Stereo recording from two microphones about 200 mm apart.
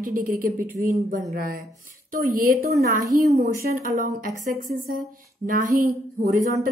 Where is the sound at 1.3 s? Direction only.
45° right (ahead or behind).